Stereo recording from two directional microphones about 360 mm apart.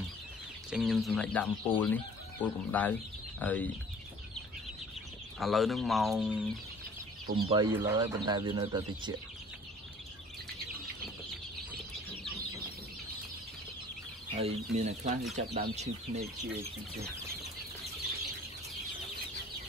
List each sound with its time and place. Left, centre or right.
0.7 s speech: centre
5.4 s speech: centre
7.2 s speech: centre
14.4 s speech: centre